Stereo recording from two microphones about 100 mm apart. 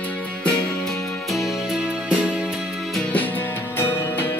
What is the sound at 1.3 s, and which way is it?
Music, 5° right (ahead or behind).